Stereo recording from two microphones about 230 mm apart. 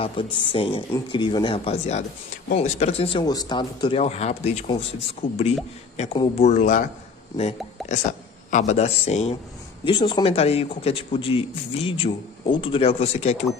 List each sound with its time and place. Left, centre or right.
0.0 s a man's voice: left